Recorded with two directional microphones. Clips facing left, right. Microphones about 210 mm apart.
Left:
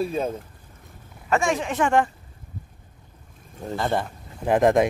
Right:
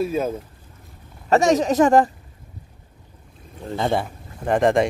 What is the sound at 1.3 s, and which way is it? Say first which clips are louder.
Speech: right 6 dB; 40° right (ahead or behind).